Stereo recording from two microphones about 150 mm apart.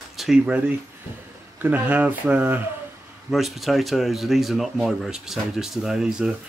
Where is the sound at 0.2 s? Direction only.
5° right (ahead or behind).